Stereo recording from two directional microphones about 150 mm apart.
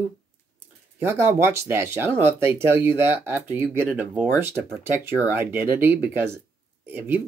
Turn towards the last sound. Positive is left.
turn(degrees=-15)  # may be behind; listen again after turning